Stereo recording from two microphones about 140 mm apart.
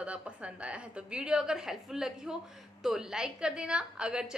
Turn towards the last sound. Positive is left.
turn(degrees=-5)  # may be behind; listen again after turning